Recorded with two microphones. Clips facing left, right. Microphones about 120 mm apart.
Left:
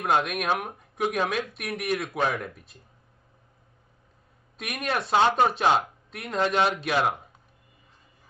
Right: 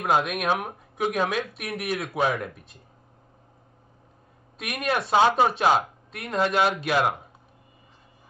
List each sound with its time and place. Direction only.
0.0 s speech: centre (ahead or behind)
4.6 s speech: centre (ahead or behind)